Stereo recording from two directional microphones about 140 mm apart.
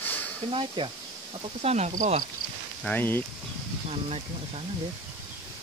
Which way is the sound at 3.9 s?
50° right (ahead or behind).